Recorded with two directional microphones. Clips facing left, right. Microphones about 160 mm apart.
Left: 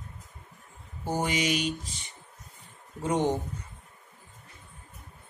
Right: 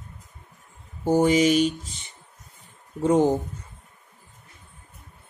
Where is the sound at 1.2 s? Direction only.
40° right (ahead or behind).